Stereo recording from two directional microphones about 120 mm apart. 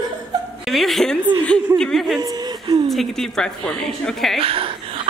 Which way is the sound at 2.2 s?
30° right (ahead or behind).